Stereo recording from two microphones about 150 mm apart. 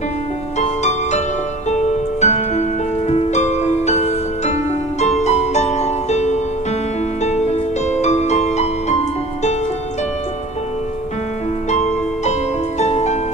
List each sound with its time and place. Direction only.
0.6 s music: 50° left (ahead or behind)
11.7 s music: 50° left (ahead or behind)